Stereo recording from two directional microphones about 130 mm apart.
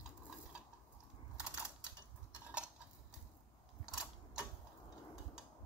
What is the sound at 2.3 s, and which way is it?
Tick-tock, 10° right (ahead or behind).